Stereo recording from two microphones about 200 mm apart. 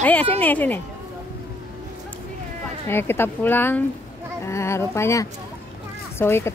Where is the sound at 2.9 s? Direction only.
10° left (ahead or behind).